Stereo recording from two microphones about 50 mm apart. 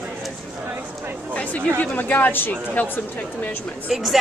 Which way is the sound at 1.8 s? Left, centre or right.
Left.